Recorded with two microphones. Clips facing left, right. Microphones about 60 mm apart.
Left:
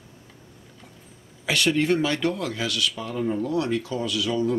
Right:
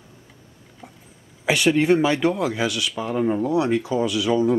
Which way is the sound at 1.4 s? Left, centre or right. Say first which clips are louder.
Right 4 dB; centre.